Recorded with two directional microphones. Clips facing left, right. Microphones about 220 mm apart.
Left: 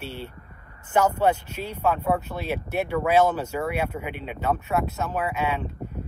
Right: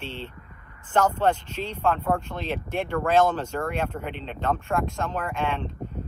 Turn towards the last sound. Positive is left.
turn(degrees=10)  # may be behind; listen again after turning